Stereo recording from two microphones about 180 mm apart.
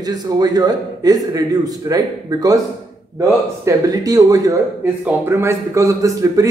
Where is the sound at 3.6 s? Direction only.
20° right (ahead or behind).